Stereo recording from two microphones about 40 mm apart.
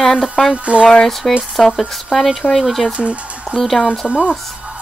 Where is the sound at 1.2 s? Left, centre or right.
Centre.